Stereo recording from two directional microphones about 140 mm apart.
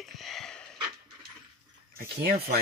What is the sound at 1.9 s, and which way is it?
Speech, 90° right.